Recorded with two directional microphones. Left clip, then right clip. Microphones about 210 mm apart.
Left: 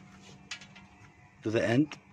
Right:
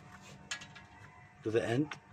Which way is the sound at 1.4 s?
50° left (ahead or behind).